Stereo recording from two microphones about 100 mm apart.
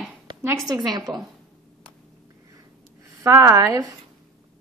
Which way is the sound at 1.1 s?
Centre (ahead or behind).